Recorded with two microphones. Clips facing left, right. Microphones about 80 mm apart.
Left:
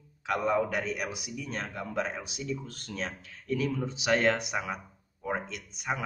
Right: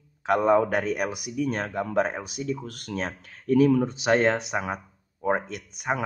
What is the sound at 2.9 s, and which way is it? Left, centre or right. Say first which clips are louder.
A man's voice: right 5 dB; right.